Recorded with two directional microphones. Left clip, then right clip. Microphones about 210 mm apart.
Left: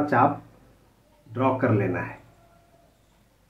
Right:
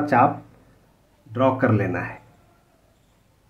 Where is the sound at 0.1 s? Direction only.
55° right (ahead or behind).